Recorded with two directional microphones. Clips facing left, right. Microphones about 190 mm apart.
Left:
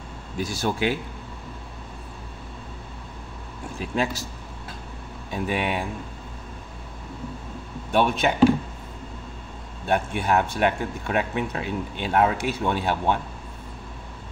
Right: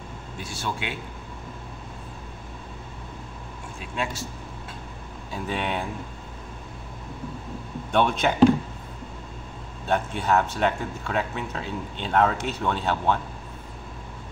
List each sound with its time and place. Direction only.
0.5 s speech: 40° left (ahead or behind)
3.8 s speech: 35° left (ahead or behind)
5.3 s speech: 10° left (ahead or behind)
7.9 s speech: 5° left (ahead or behind)
9.8 s speech: 10° left (ahead or behind)